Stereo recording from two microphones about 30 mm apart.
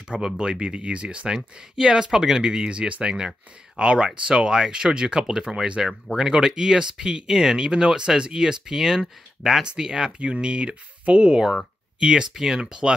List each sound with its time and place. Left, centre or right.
0.1 s speech: right
1.3 s speech: right
2.4 s speech: right
5.8 s speech: centre
10.1 s speech: right